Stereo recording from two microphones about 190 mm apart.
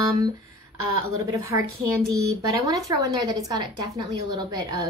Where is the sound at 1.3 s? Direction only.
15° right (ahead or behind).